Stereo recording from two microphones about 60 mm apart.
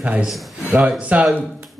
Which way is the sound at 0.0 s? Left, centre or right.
Right.